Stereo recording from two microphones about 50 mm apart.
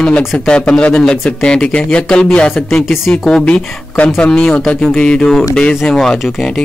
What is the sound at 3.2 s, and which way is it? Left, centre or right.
Speech, centre.